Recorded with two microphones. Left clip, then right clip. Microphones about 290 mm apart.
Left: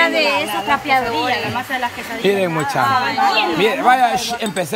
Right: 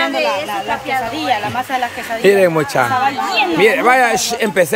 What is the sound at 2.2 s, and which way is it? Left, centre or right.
Speech, centre.